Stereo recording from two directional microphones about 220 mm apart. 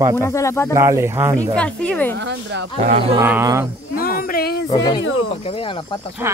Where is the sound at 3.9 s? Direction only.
40° left (ahead or behind).